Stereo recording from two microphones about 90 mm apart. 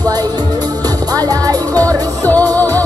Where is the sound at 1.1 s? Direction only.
45° right (ahead or behind).